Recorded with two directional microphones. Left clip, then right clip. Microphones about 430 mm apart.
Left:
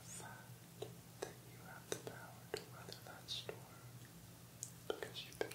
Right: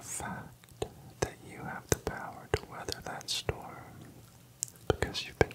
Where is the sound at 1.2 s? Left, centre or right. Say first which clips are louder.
Right 14 dB; right.